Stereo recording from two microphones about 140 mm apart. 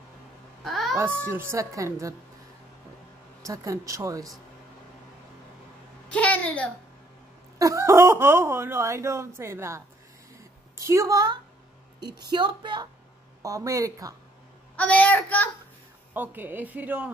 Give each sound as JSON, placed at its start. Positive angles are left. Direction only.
{"t": 0.7, "sound": "a sound", "side_deg": 0}
{"t": 0.9, "sound": "speech", "side_deg": -15}
{"t": 3.4, "sound": "speech", "side_deg": -20}
{"t": 6.0, "sound": "a sound", "side_deg": 10}
{"t": 7.5, "sound": "speech", "side_deg": -20}
{"t": 13.4, "sound": "speech", "side_deg": -25}
{"t": 14.8, "sound": "a woman's voice", "side_deg": 10}
{"t": 16.1, "sound": "a woman's voice", "side_deg": -15}